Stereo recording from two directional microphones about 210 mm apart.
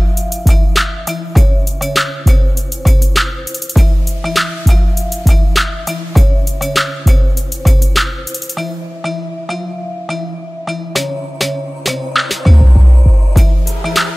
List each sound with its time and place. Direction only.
0.4 s music: centre (ahead or behind)
10.7 s music: centre (ahead or behind)